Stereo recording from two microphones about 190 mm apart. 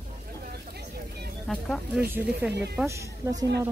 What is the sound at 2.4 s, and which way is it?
A woman's voice, 10° right (ahead or behind).